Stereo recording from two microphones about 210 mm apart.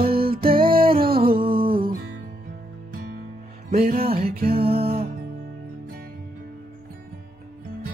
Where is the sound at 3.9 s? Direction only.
30° right (ahead or behind).